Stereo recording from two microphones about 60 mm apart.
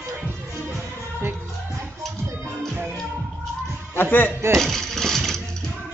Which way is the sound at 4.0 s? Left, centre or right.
Left.